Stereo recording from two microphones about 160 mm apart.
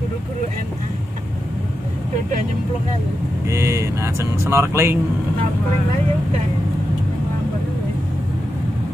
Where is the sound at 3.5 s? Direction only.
20° right (ahead or behind).